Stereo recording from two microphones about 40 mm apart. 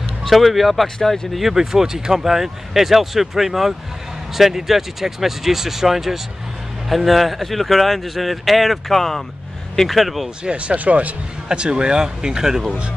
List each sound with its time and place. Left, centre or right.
0.3 s a man's voice: centre
0.8 s speech: centre
1.3 s a man's voice: centre
10.4 s speech: right
11.4 s speech: right